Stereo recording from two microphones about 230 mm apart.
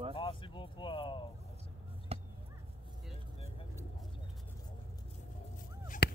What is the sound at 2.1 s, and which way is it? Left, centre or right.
Chop, right.